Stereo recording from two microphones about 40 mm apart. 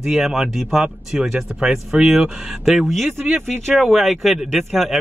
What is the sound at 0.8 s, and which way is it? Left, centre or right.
Speech, right.